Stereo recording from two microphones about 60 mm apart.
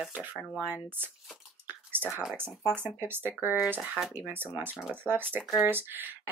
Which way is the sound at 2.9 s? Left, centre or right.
Right.